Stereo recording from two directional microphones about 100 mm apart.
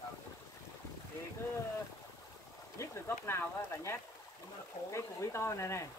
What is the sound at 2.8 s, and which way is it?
Speech, 25° left (ahead or behind).